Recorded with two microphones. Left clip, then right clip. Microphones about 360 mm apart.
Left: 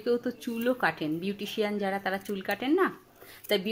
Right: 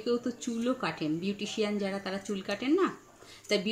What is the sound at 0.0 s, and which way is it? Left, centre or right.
Speech, left.